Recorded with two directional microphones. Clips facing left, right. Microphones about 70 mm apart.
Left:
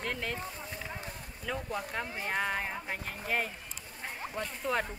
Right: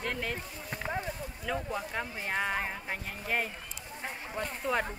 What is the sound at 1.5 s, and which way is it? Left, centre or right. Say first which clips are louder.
Speech: right 1 dB; centre.